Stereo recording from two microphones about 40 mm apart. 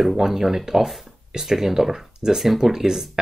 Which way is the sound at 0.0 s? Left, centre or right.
Centre.